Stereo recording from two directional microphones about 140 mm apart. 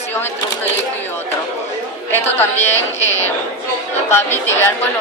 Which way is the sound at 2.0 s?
15° left (ahead or behind).